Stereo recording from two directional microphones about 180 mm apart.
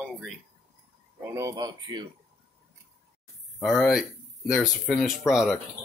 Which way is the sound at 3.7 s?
Centre (ahead or behind).